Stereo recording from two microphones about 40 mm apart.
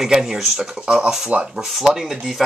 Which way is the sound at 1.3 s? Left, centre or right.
Right.